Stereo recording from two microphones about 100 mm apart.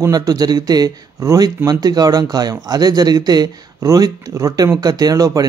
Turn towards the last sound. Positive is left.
turn(degrees=-35)  # may be behind; listen again after turning